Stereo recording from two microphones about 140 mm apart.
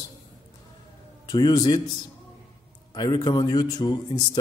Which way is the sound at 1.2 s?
25° left (ahead or behind).